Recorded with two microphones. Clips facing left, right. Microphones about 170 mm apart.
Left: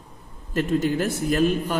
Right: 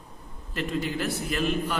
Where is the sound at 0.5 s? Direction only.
45° left (ahead or behind).